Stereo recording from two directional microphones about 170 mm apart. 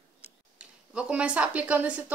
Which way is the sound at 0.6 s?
5° right (ahead or behind).